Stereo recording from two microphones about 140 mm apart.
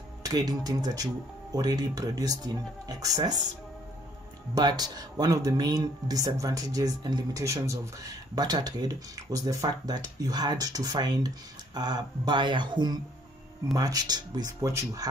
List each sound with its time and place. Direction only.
0.2 s speech: 30° right (ahead or behind)
4.6 s speech: 30° right (ahead or behind)